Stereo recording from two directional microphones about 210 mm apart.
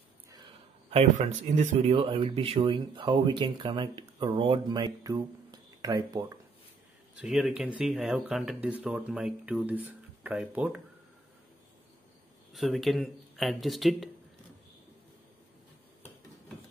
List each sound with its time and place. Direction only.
0.8 s speech: 30° right (ahead or behind)
7.2 s speech: centre (ahead or behind)
12.5 s speech: centre (ahead or behind)